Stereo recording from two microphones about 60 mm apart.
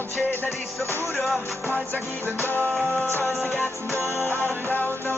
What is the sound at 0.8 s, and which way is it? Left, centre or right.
Music, right.